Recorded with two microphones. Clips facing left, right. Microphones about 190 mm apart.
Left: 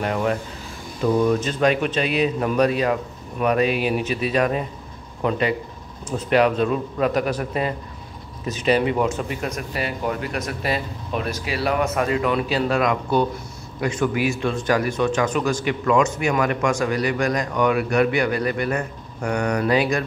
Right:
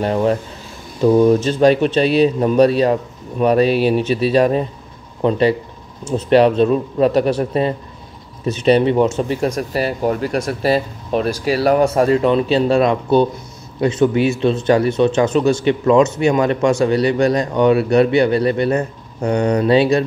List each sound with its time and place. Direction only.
0.0 s speech: 30° right (ahead or behind)